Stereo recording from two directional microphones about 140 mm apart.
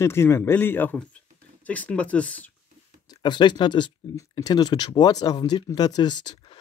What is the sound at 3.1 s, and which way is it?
Speech, 35° left (ahead or behind).